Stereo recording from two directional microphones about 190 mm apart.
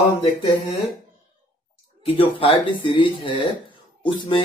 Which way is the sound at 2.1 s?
30° left (ahead or behind).